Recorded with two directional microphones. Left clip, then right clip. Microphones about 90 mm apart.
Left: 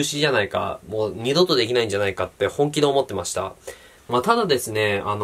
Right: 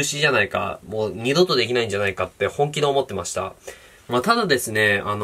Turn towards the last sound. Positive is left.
turn(degrees=15)  # may be behind; listen again after turning